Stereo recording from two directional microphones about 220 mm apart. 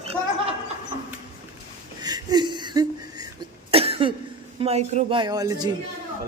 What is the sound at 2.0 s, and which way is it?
Throat clearing, 20° right (ahead or behind).